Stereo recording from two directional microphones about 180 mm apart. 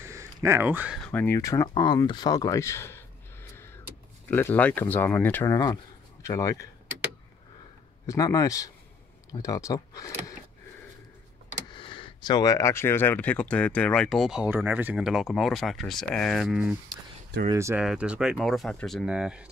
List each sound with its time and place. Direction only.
0.0 s a sound: 15° right (ahead or behind)
1.0 s speech: 10° left (ahead or behind)
4.3 s speech: 10° left (ahead or behind)
8.1 s a man's voice: 20° left (ahead or behind)
11.7 s speech: 30° left (ahead or behind); by 16.7 s centre (ahead or behind)
17.5 s speech: 15° right (ahead or behind)